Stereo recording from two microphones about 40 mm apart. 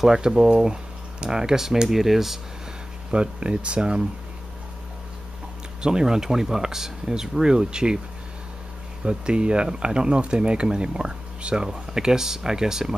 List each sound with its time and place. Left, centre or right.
0.0 s speech: centre
3.1 s speech: right
5.8 s speech: centre
9.0 s speech: right